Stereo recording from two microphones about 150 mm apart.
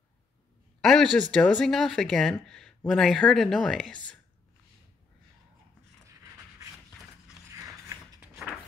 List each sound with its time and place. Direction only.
0.7 s a sound: centre (ahead or behind)
1.3 s speech: 5° left (ahead or behind)
7.5 s mechanisms: 20° right (ahead or behind)